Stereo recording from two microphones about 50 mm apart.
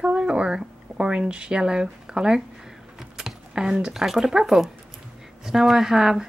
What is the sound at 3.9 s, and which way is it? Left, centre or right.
Speech, centre.